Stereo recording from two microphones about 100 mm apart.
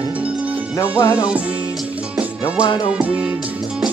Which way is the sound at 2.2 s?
15° right (ahead or behind).